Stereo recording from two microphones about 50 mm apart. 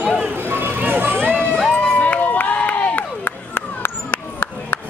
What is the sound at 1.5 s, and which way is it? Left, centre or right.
Crowd, left.